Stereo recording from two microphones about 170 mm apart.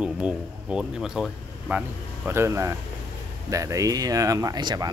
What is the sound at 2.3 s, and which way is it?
Speech, 15° right (ahead or behind).